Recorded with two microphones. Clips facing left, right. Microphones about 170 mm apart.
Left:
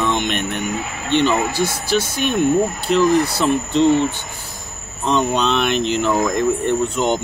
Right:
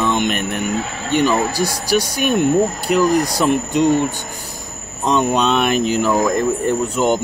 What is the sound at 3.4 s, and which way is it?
Speech, 15° right (ahead or behind).